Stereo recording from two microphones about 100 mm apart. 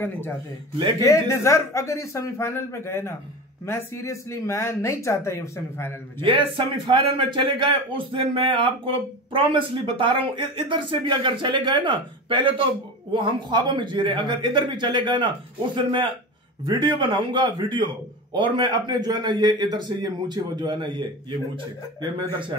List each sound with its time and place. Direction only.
1.0 s speech: 30° left (ahead or behind)
6.2 s a man's voice: 60° right (ahead or behind)